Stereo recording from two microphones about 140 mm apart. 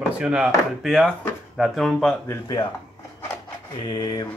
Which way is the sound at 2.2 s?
30° left (ahead or behind).